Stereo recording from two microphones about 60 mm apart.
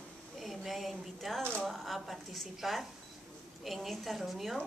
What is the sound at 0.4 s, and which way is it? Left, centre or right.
A woman's voice, centre.